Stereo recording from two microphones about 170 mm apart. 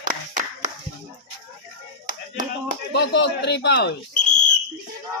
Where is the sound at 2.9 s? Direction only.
80° left.